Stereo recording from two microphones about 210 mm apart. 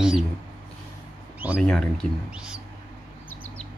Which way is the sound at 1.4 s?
5° right (ahead or behind).